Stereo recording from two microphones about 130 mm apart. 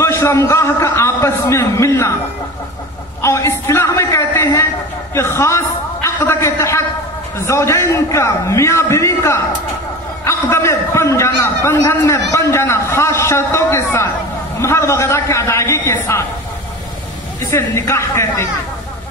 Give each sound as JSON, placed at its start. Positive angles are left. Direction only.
{"t": 0.0, "sound": "a man's voice", "side_deg": 20}
{"t": 3.2, "sound": "a man's voice", "side_deg": 20}
{"t": 6.0, "sound": "a sound", "side_deg": 20}
{"t": 7.3, "sound": "a man's voice", "side_deg": 20}
{"t": 17.4, "sound": "a man's voice", "side_deg": 20}